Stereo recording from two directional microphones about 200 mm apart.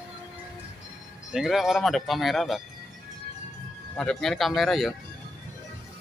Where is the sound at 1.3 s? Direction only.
Centre (ahead or behind).